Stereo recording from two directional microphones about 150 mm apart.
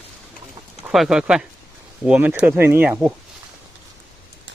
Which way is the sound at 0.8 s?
5° right (ahead or behind).